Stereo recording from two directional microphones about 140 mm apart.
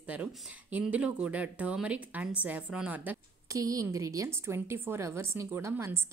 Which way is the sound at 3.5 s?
25° right (ahead or behind).